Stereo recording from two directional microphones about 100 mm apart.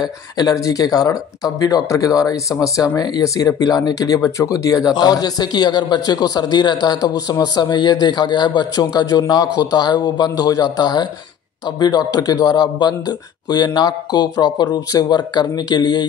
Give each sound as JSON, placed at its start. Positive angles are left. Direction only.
{"t": 0.0, "sound": "speech", "side_deg": 40}